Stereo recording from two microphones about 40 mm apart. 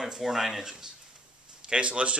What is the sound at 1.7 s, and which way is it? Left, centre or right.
Speech, right.